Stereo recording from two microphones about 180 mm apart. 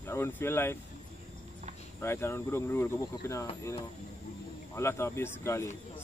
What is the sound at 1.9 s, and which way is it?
Speech, 15° left (ahead or behind).